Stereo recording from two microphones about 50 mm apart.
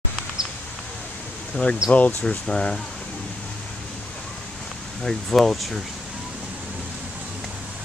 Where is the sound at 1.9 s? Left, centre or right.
Left.